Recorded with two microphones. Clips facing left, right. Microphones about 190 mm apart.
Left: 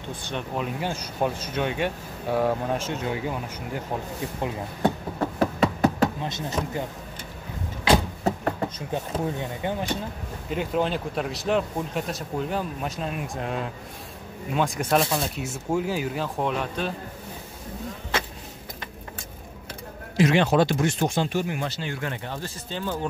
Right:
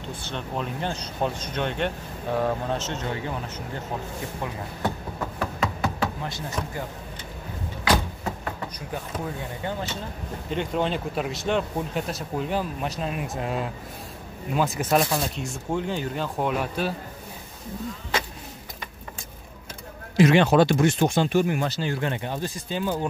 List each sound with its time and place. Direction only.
0.1 s speech: 15° left (ahead or behind)
5.4 s a sound: 40° left (ahead or behind)
6.2 s speech: 20° left (ahead or behind)
8.2 s a sound: 45° left (ahead or behind)
8.7 s speech: 25° left (ahead or behind)
10.5 s speech: 5° left (ahead or behind)
20.2 s speech: 60° right (ahead or behind); by 21.9 s 40° right (ahead or behind)
22.0 s speech: 20° right (ahead or behind)